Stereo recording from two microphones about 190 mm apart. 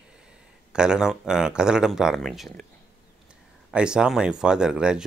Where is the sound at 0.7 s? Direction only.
5° right (ahead or behind).